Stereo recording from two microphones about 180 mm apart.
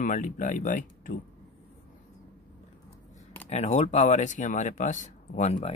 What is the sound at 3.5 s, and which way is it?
A man's voice, 40° left (ahead or behind).